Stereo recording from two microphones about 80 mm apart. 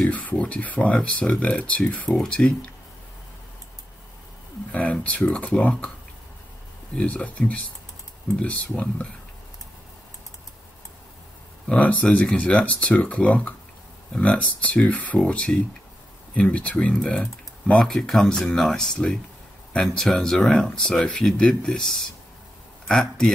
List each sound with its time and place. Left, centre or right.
0.0 s speech: centre
4.7 s speech: centre
7.0 s speech: centre
11.8 s speech: centre